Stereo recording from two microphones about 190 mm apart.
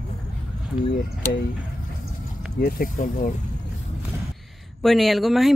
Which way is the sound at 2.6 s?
45° left (ahead or behind).